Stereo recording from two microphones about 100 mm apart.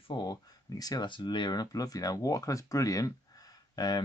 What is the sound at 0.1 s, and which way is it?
Speech, 40° left (ahead or behind).